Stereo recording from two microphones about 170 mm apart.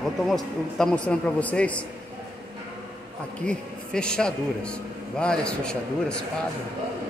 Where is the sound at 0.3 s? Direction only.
5° left (ahead or behind).